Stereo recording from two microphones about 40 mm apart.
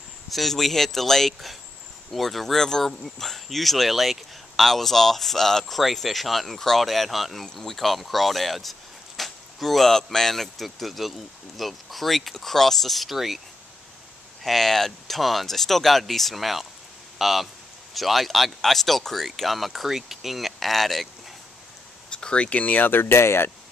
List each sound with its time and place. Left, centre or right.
0.3 s speech: centre
14.4 s speech: centre
22.1 s a sound: left
22.6 s speech: left